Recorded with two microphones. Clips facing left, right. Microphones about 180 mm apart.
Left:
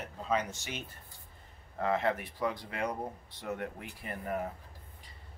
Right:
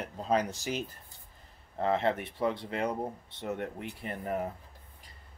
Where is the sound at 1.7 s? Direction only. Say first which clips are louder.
Right 2 dB; 25° right (ahead or behind).